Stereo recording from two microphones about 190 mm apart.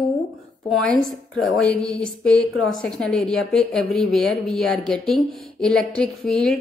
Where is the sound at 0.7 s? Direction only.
Centre (ahead or behind).